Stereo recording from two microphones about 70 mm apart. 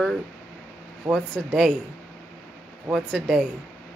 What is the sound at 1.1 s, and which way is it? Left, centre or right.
Speech, right.